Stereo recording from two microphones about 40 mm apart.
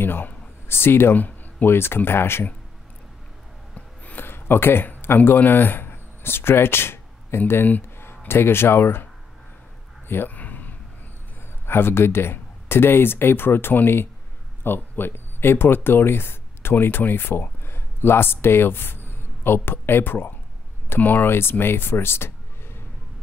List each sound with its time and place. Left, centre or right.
0.0 s speech: left
0.7 s speech: left
1.1 s a sound: left
1.7 s speech: left
3.7 s a sound: left
4.2 s speech: left
10.0 s speech: left
10.3 s a sound: left
11.6 s speech: left